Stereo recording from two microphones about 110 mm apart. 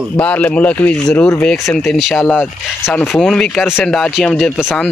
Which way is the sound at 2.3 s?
15° left (ahead or behind).